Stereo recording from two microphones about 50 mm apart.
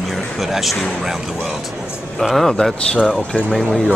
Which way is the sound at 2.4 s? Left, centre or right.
Centre.